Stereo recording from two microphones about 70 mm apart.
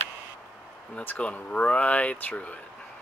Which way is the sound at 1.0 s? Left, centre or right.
Centre.